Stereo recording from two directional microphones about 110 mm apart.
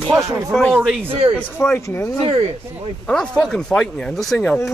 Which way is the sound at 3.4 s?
5° left (ahead or behind).